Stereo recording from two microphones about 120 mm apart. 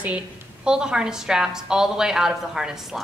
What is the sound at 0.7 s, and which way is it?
A woman's voice, 5° right (ahead or behind).